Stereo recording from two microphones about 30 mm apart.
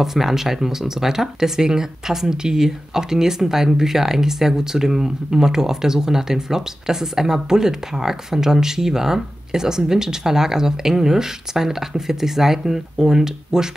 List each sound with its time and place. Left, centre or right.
0.0 s speech: centre